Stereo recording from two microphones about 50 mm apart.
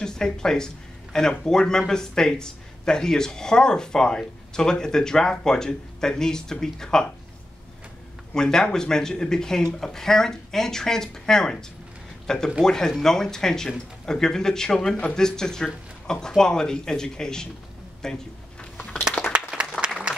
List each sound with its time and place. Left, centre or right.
0.0 s speech: centre
8.4 s speech: centre
18.0 s a sound: centre
19.3 s applause: centre